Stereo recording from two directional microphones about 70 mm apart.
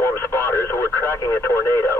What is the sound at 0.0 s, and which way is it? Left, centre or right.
Radio, left.